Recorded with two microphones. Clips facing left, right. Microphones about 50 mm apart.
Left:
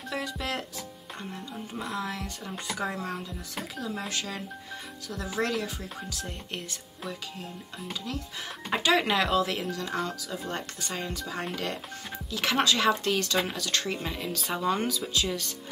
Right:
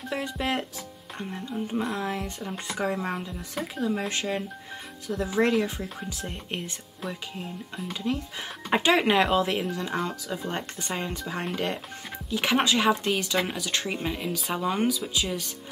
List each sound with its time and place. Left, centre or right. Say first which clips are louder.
0.1 s speech: right 4 dB; right
2.0 s speech: right 3 dB; right
8.1 s speech: right 5 dB; right